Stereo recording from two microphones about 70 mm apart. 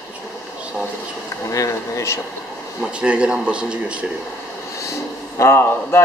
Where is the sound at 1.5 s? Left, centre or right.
Left.